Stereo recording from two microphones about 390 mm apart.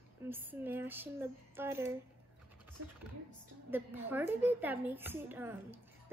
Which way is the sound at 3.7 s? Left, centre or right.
Centre.